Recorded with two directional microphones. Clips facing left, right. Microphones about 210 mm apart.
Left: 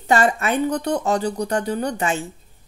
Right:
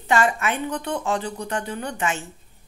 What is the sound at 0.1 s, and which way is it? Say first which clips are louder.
Speech: left 3 dB; 35° left (ahead or behind).